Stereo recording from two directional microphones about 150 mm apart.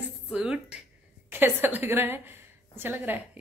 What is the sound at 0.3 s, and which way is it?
A woman's voice, 5° right (ahead or behind).